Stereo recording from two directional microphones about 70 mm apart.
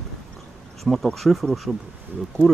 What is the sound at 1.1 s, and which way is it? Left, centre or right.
Speech, centre.